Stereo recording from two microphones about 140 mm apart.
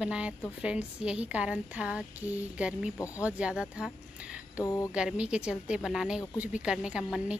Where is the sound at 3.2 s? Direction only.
10° right (ahead or behind).